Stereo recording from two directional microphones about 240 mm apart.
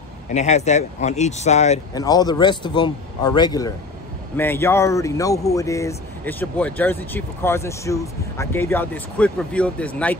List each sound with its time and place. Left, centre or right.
0.3 s speech: left
2.0 s speech: centre